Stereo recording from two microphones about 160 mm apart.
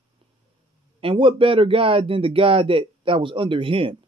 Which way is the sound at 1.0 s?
30° right (ahead or behind).